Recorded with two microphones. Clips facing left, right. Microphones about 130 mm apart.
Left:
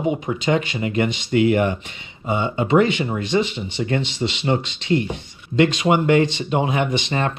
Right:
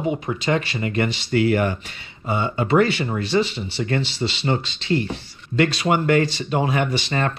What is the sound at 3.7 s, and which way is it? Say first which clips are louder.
Speech: left 1 dB; 15° left (ahead or behind).